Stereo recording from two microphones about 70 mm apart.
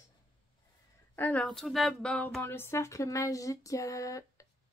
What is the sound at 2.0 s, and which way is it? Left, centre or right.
Speech, centre.